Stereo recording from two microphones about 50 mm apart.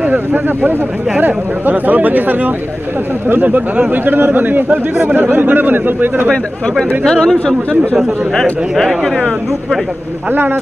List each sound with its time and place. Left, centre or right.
0.0 s speech: right
4.0 s speech: right
7.1 s speech: centre
8.7 s speech: centre
10.3 s speech: right